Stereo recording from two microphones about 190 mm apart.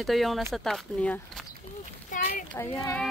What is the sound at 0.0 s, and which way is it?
Speech, centre (ahead or behind).